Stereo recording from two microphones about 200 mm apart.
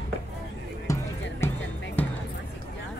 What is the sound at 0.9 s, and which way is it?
Music, 10° left (ahead or behind).